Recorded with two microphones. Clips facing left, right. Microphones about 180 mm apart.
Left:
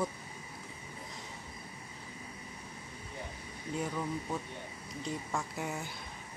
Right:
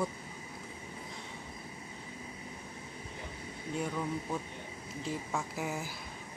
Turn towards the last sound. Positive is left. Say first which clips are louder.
# right 1 dB
turn(degrees=0)  # may be behind; listen again after turning